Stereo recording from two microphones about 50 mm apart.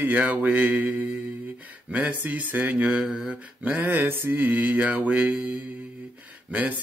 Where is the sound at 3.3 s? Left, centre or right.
Right.